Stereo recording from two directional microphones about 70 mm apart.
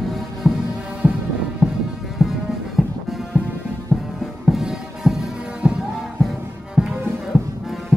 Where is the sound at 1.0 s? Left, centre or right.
Centre.